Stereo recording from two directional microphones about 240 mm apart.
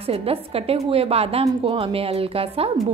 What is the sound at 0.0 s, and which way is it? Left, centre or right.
A woman's voice, right.